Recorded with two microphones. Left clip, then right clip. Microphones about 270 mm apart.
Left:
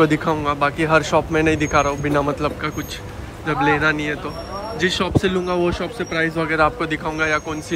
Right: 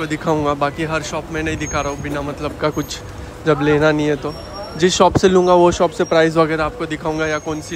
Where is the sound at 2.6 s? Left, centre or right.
Centre.